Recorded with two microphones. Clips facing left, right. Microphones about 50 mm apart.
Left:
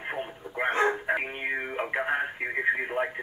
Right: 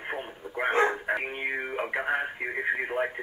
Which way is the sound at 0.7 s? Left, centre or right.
Centre.